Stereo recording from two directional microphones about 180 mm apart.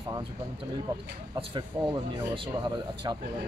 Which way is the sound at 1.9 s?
25° right (ahead or behind).